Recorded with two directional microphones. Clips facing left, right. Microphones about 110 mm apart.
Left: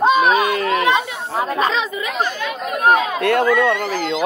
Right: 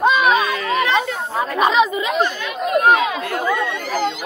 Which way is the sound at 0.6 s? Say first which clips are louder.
Left 1 dB; 55° left (ahead or behind).